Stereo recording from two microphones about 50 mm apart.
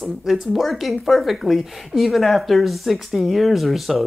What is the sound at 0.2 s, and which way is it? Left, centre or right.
Speech, centre.